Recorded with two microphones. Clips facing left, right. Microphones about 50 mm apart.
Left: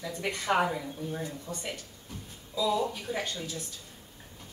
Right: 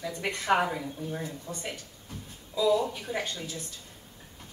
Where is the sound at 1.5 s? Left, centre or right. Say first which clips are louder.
Even; right.